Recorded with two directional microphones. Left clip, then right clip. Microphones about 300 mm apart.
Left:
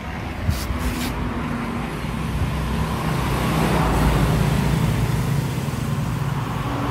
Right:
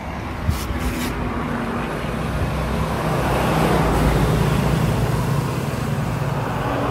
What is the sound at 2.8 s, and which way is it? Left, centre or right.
Vehicle, right.